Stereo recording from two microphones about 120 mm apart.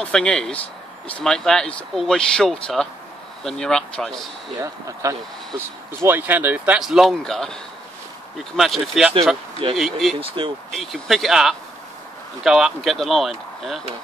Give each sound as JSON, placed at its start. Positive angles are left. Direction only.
{"t": 0.0, "sound": "speech", "side_deg": 5}
{"t": 4.6, "sound": "speech", "side_deg": -25}
{"t": 6.0, "sound": "speech", "side_deg": -15}
{"t": 10.2, "sound": "speech", "side_deg": -45}
{"t": 10.7, "sound": "speech", "side_deg": 0}